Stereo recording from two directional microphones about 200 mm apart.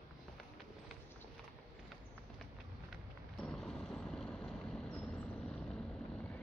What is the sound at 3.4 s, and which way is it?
Vehicle, 5° left (ahead or behind).